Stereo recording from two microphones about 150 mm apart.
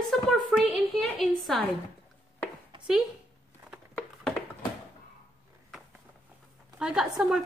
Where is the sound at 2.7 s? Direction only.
35° right (ahead or behind).